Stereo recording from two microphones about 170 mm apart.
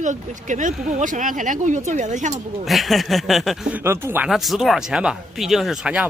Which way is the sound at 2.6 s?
Centre (ahead or behind).